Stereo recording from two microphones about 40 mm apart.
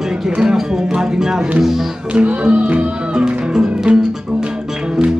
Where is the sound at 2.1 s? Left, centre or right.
Right.